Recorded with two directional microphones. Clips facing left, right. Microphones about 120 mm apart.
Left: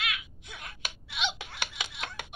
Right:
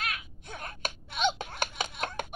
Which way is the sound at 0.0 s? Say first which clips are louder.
Even; 45° right (ahead or behind).